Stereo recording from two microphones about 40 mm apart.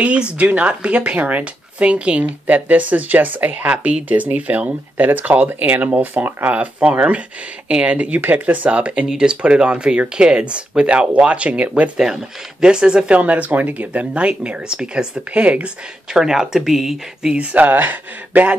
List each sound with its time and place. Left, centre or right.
0.0 s speech: right
2.4 s speech: right
6.5 s speech: right
8.2 s speech: right
12.0 s speech: centre
13.1 s speech: right
15.3 s speech: right
16.1 s speech: centre
17.3 s speech: right
17.6 s speech: right